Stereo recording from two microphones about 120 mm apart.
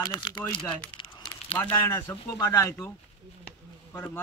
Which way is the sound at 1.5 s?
20° left (ahead or behind).